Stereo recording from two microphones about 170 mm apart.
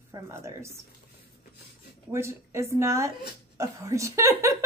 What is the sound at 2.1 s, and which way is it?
A woman's voice, 15° right (ahead or behind).